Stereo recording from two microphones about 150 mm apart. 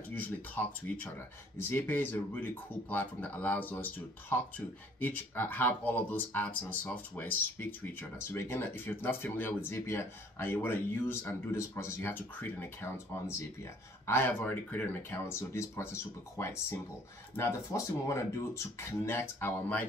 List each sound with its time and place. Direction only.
0.1 s speech: 10° left (ahead or behind)